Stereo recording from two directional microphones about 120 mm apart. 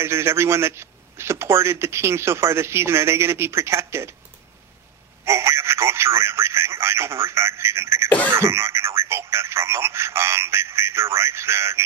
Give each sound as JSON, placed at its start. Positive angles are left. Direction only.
{"t": 0.0, "sound": "speech", "side_deg": -20}
{"t": 5.2, "sound": "speech", "side_deg": -20}